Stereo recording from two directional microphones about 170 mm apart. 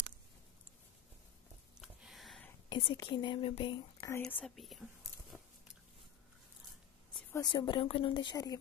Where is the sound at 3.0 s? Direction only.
30° left (ahead or behind).